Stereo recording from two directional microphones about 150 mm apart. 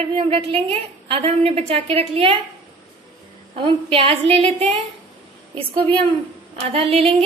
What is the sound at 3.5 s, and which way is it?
A woman's voice, 40° right (ahead or behind).